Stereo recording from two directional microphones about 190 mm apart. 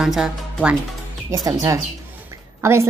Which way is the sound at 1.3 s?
20° right (ahead or behind).